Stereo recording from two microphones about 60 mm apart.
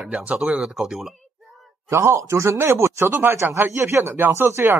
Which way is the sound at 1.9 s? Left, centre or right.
Right.